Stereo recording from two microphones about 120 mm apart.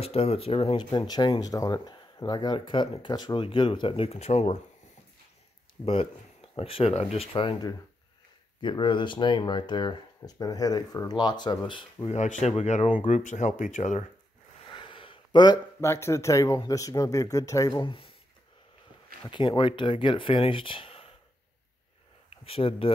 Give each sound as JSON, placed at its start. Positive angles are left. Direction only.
{"t": 0.0, "sound": "speech", "side_deg": 55}
{"t": 5.9, "sound": "speech", "side_deg": 55}
{"t": 8.5, "sound": "speech", "side_deg": 40}
{"t": 12.1, "sound": "speech", "side_deg": 75}
{"t": 14.7, "sound": "a sound", "side_deg": 45}
{"t": 15.8, "sound": "speech", "side_deg": 20}
{"t": 17.8, "sound": "speech", "side_deg": 50}
{"t": 19.2, "sound": "speech", "side_deg": 40}
{"t": 22.3, "sound": "speech", "side_deg": 50}